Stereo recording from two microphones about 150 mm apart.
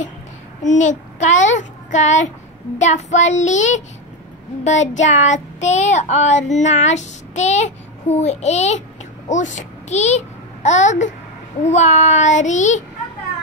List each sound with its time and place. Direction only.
0.6 s a child's voice: 55° left (ahead or behind)
2.8 s child singing: 50° left (ahead or behind)
9.3 s a child's voice: 55° left (ahead or behind)
11.6 s child singing: 50° left (ahead or behind)